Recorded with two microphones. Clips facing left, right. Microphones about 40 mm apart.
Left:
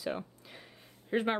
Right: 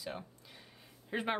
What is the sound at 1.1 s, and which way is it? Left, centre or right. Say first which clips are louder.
Speech: left 5 dB; centre.